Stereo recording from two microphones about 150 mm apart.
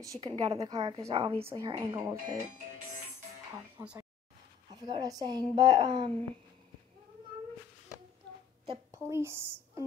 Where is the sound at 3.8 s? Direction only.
20° right (ahead or behind).